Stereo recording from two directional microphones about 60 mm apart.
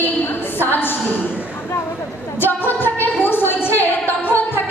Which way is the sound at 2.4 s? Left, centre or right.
Left.